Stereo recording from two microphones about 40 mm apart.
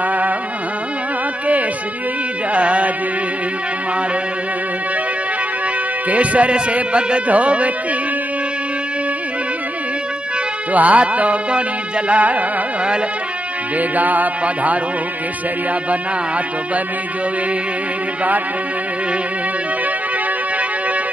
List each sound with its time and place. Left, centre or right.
0.0 s music: right
2.5 s music: right
6.0 s speech: right
10.7 s speech: right
13.7 s music: right